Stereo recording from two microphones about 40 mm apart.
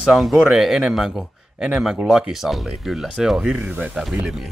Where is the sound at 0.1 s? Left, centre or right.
Centre.